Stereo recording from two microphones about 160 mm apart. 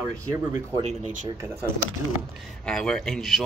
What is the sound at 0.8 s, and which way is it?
Speech, 45° right (ahead or behind).